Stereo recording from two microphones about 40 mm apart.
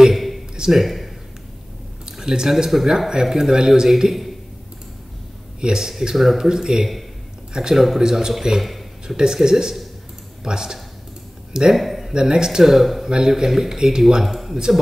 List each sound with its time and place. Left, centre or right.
0.1 s a sound: centre
0.6 s speech: centre
2.0 s speech: centre
5.6 s speech: centre
11.7 s speech: centre
12.1 s speech: centre
13.1 s speech: centre